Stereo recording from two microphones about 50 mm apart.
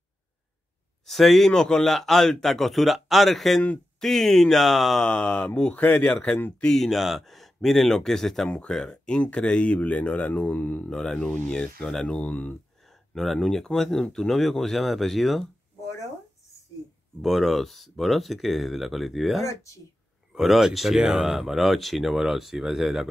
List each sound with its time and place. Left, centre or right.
1.0 s speech: centre
5.0 s speech: left
6.6 s speech: centre; by 10.9 s left
10.9 s speech: centre
12.8 s a sound: centre
13.7 s speech: centre
17.2 s speech: centre
19.4 s speech: left
20.3 s speech: centre